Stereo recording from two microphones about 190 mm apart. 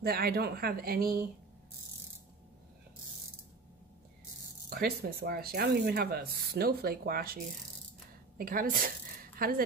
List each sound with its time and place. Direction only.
0.0 s speech: 55° right (ahead or behind)
4.6 s speech: 55° right (ahead or behind)
8.4 s speech: 50° right (ahead or behind)